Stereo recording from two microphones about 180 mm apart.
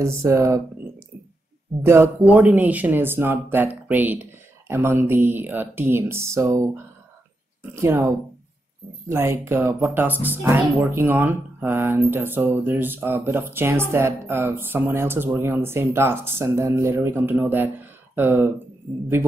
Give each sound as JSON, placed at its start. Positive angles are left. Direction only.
{"t": 0.0, "sound": "speech", "side_deg": -15}
{"t": 1.8, "sound": "speech", "side_deg": -15}
{"t": 9.1, "sound": "speech", "side_deg": -15}